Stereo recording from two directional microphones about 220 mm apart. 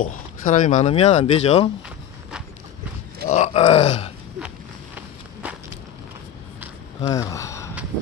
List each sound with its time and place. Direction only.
0.0 s speech: 35° left (ahead or behind)
3.3 s speech: 30° left (ahead or behind)
4.9 s walk: 5° right (ahead or behind)
7.0 s speech: 15° left (ahead or behind)